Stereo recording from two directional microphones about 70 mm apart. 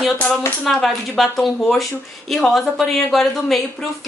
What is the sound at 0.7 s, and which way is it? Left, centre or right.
A woman's voice, centre.